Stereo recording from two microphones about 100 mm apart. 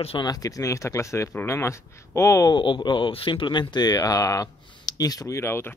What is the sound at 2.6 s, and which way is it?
Speech, 50° left (ahead or behind).